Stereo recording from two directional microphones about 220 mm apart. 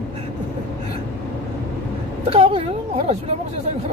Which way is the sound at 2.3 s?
25° right (ahead or behind).